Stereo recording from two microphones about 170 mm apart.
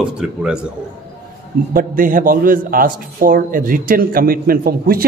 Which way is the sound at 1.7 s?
55° right (ahead or behind).